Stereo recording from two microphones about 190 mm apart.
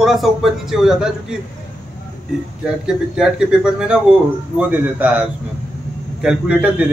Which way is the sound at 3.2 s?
5° right (ahead or behind).